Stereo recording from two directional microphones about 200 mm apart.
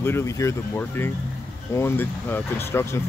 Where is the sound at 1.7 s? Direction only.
10° left (ahead or behind).